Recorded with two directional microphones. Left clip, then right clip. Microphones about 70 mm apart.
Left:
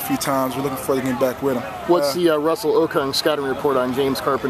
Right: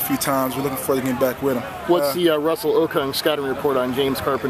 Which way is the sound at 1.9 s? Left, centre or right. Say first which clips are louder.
Left 1 dB; left.